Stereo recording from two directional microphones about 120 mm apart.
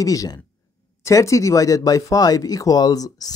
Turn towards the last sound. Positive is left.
turn(degrees=30)  # may be behind; listen again after turning